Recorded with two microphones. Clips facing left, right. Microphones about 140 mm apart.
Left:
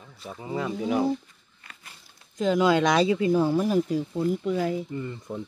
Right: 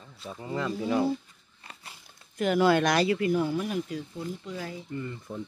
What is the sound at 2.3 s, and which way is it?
Speech, 20° left (ahead or behind).